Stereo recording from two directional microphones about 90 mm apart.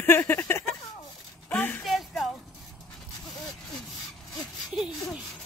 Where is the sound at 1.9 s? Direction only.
Centre (ahead or behind).